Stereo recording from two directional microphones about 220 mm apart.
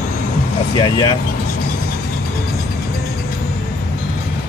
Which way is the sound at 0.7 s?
20° left (ahead or behind).